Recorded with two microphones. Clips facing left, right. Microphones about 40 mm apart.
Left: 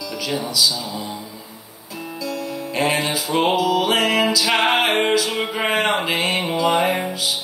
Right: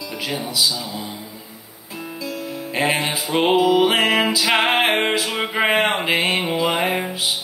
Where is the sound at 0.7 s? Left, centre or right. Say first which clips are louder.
Left 1 dB; centre.